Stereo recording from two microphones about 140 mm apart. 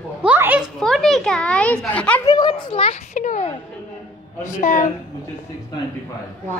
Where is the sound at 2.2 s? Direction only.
30° left (ahead or behind).